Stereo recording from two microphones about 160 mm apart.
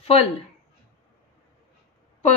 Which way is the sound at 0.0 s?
40° left (ahead or behind).